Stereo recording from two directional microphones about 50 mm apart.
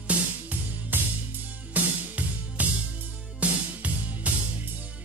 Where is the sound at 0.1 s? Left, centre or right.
Right.